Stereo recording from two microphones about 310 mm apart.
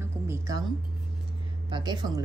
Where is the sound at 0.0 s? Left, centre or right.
Centre.